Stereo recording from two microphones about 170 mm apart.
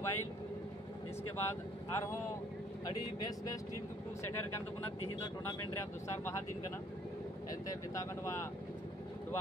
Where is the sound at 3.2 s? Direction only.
20° left (ahead or behind).